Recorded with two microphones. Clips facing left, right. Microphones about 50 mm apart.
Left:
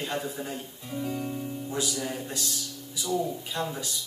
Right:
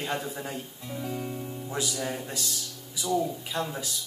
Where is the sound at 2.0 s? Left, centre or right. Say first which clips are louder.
Right 1 dB; centre.